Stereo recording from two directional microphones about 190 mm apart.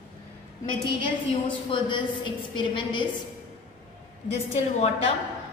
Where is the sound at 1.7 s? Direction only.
25° left (ahead or behind).